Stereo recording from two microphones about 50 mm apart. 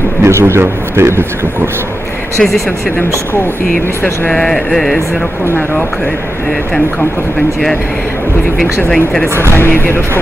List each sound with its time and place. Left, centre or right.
0.2 s a man's voice: right
4.3 s speech: centre
8.9 s speech: centre
9.5 s speech: left